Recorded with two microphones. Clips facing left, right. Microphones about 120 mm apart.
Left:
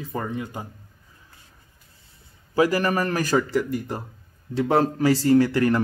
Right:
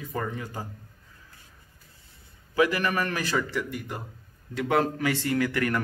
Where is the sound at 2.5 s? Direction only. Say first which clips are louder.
Left 4 dB; 35° left (ahead or behind).